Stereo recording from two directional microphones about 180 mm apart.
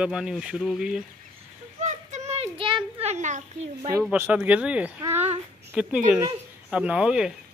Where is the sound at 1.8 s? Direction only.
40° right (ahead or behind).